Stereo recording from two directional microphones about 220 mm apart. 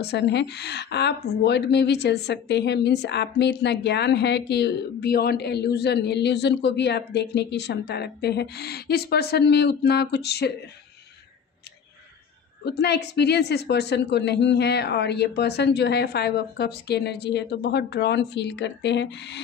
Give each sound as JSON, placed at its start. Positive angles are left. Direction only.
{"t": 0.0, "sound": "a woman's voice", "side_deg": 50}
{"t": 12.6, "sound": "a woman's voice", "side_deg": 50}